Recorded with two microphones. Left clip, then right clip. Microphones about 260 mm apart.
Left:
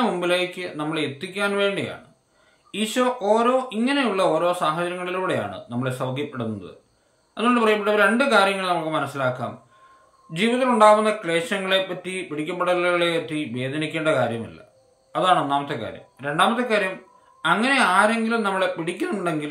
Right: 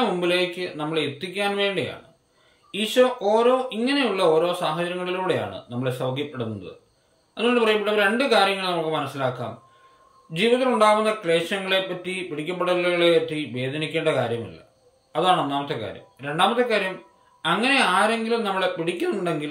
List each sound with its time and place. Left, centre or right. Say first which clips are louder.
0.0 s speech: even; centre